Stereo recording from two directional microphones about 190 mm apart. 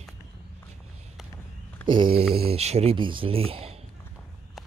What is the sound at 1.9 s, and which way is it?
Mantra, 25° right (ahead or behind).